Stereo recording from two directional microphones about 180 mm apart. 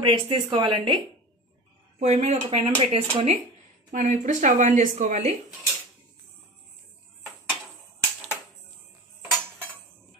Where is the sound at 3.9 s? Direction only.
45° right (ahead or behind).